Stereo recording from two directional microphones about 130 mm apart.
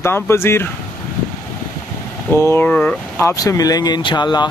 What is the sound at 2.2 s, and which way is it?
Speech, 20° left (ahead or behind).